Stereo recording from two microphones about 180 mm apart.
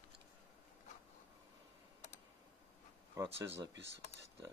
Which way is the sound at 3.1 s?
15° right (ahead or behind).